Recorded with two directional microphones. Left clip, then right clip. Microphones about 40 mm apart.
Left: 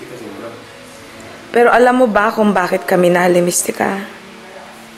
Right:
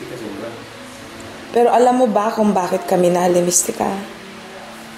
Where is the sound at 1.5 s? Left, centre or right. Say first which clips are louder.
Left 3 dB; left.